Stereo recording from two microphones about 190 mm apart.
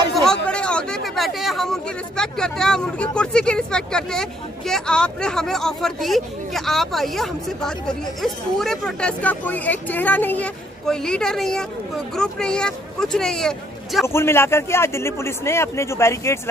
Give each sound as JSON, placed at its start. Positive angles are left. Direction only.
{"t": 0.1, "sound": "a man's voice", "side_deg": 5}